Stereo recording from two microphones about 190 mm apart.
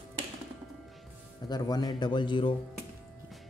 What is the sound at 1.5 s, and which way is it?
Speech, 20° left (ahead or behind).